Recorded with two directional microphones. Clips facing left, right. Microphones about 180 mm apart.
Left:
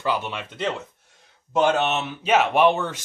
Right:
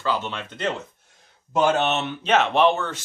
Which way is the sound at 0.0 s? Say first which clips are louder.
Even; 15° left (ahead or behind).